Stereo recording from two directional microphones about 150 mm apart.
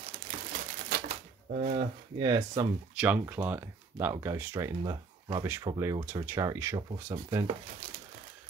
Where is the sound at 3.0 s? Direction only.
10° right (ahead or behind).